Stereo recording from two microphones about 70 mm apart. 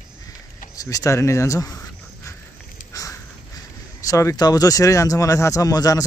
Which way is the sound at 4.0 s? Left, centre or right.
Left.